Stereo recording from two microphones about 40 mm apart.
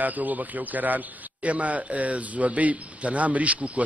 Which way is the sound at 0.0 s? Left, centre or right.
Right.